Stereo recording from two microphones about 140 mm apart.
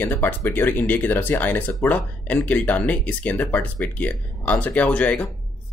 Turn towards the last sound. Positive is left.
turn(degrees=10)  # may be behind; listen again after turning